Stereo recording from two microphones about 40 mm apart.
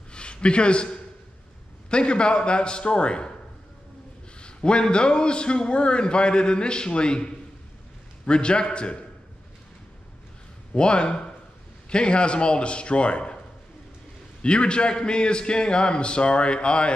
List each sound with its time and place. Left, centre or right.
0.1 s a sound: left
1.9 s a man's voice: left
4.4 s a man's voice: left
10.7 s a man's voice: left
14.4 s a man's voice: left